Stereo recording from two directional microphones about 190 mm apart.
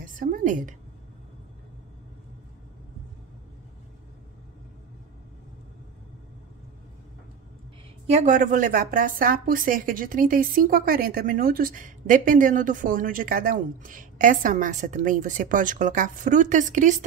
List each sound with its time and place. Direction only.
0.0 s a woman's voice: 45° right (ahead or behind)
8.1 s a woman's voice: 40° right (ahead or behind)